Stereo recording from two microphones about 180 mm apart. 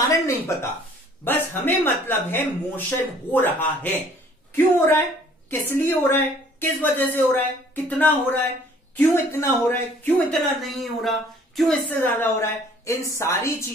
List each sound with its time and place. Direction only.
0.0 s a sound: 15° left (ahead or behind)
1.2 s speech: 10° left (ahead or behind)
10.6 s speech: centre (ahead or behind)